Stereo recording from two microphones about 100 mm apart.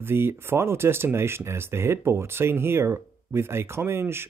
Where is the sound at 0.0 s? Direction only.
25° right (ahead or behind).